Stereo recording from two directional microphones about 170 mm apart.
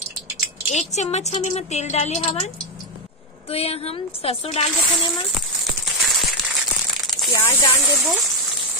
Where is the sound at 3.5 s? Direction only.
35° left (ahead or behind).